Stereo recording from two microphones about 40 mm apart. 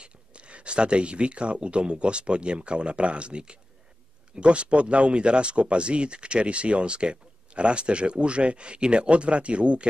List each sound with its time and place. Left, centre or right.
0.0 s speech: right